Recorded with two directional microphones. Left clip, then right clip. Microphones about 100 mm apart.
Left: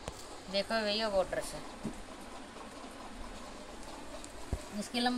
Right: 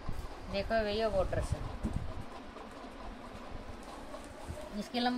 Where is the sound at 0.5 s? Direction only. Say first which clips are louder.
Even; 10° right (ahead or behind).